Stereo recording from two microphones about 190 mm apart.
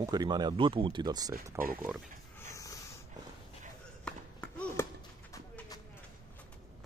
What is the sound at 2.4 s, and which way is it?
Dog, 15° left (ahead or behind).